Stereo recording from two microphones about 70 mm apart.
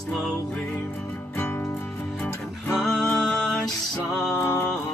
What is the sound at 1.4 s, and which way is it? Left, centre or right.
Music, left.